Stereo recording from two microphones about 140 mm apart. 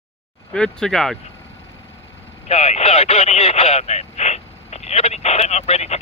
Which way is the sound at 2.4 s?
50° left (ahead or behind).